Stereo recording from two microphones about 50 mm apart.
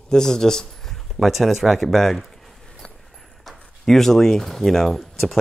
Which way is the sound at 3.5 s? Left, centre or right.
Centre.